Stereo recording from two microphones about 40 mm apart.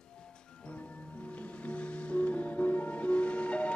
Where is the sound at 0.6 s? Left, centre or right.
Left.